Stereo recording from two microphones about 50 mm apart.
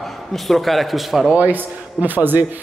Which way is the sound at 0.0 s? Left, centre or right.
Centre.